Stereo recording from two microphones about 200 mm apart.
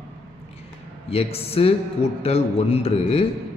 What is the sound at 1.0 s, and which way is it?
A man's voice, 30° left (ahead or behind).